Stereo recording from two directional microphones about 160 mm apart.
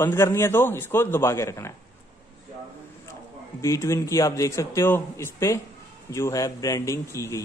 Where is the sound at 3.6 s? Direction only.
20° left (ahead or behind).